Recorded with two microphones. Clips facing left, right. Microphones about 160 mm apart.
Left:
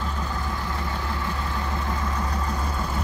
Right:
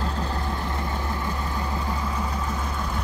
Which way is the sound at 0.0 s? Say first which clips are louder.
Right 2 dB; 35° right (ahead or behind).